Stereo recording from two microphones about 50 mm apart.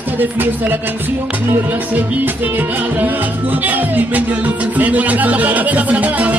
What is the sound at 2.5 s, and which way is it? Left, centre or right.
Music, right.